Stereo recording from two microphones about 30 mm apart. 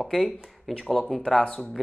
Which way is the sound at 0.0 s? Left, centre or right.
Centre.